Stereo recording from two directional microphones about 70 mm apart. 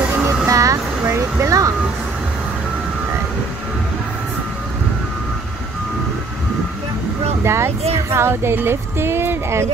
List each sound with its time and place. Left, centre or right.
0.5 s music: right
7.4 s speech: right